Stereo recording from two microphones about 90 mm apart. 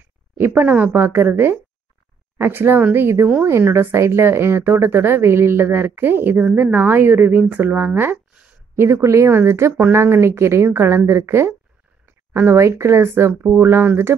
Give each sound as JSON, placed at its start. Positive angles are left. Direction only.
{"t": 0.4, "sound": "speech", "side_deg": -25}